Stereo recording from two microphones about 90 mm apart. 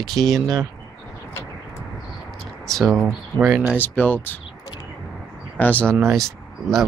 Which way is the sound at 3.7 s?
20° left (ahead or behind).